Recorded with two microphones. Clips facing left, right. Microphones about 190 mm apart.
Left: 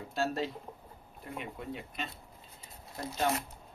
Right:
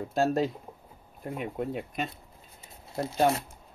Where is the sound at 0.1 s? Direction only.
45° right (ahead or behind).